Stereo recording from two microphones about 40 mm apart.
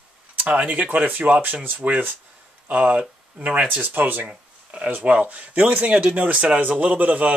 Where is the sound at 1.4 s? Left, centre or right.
Right.